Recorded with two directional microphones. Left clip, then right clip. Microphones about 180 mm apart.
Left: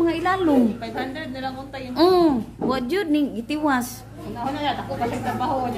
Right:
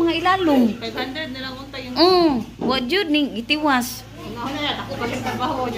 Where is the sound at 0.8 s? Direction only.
70° left (ahead or behind).